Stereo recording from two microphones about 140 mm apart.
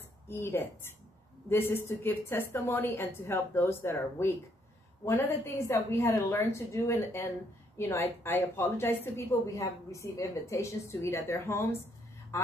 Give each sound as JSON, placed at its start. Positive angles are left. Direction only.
{"t": 0.3, "sound": "a woman's voice", "side_deg": 15}